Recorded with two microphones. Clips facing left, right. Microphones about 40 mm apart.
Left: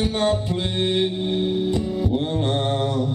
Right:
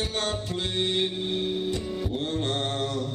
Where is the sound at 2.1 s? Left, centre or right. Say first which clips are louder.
Left 4 dB; centre.